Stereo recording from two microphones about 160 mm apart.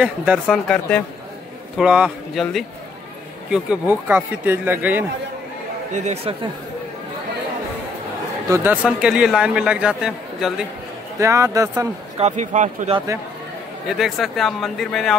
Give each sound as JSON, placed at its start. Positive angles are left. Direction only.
{"t": 0.0, "sound": "a man's voice", "side_deg": -5}
{"t": 1.8, "sound": "a man's voice", "side_deg": -5}
{"t": 5.9, "sound": "speech", "side_deg": -45}
{"t": 8.8, "sound": "a man's voice", "side_deg": -5}
{"t": 11.1, "sound": "speech", "side_deg": -20}
{"t": 12.2, "sound": "speech", "side_deg": -50}
{"t": 13.8, "sound": "a man's voice", "side_deg": 0}